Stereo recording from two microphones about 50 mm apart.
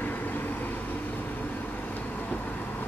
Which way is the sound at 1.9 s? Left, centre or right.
Left.